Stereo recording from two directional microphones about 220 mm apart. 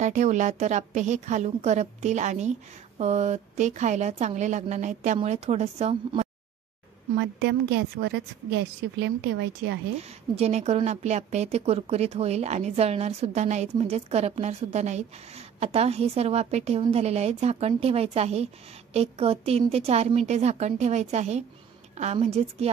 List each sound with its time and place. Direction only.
0.0 s speech: 35° right (ahead or behind)
7.2 s a woman's voice: 50° right (ahead or behind)
10.3 s speech: 30° right (ahead or behind)